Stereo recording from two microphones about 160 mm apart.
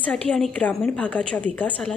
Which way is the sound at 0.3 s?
5° left (ahead or behind).